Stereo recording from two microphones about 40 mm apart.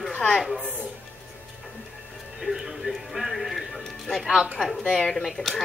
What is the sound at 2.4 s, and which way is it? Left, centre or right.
A man's voice, centre.